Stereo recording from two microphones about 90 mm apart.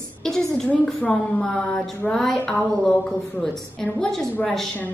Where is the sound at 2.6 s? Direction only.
15° left (ahead or behind).